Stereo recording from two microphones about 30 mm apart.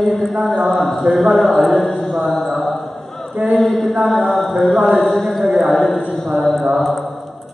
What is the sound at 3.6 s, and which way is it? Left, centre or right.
Mantra, centre.